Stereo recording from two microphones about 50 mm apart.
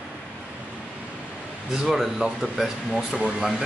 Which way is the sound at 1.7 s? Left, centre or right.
Centre.